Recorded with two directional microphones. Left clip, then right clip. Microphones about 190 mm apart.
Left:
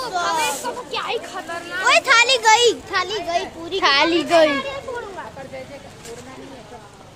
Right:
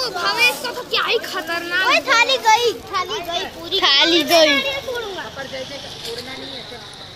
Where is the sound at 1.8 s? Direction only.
60° left (ahead or behind).